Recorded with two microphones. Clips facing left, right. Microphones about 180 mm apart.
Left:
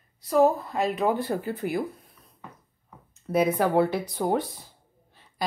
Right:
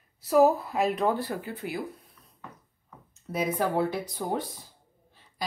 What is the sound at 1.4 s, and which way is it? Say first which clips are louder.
Speech: left 6 dB; 50° left (ahead or behind).